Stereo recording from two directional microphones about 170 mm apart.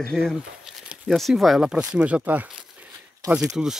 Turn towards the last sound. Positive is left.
turn(degrees=-5)  # may be behind; listen again after turning